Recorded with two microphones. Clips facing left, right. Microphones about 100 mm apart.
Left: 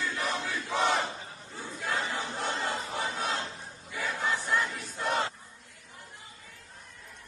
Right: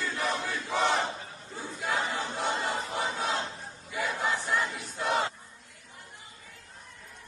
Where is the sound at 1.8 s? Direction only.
20° right (ahead or behind).